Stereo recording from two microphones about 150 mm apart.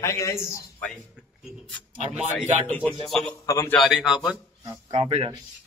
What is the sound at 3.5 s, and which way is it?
Speech, 20° left (ahead or behind).